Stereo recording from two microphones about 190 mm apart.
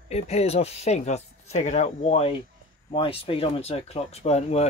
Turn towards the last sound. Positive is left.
turn(degrees=35)  # may be behind; listen again after turning